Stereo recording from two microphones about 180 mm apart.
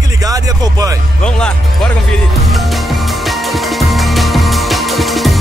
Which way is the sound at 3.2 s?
Centre (ahead or behind).